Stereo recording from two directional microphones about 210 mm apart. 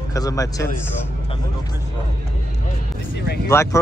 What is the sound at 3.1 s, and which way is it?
Vehicle, 50° left (ahead or behind).